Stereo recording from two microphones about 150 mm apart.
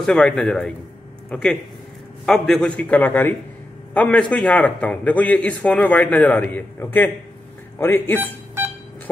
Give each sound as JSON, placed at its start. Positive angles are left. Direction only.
{"t": 0.0, "sound": "a man's voice", "side_deg": 5}
{"t": 8.2, "sound": "music", "side_deg": -15}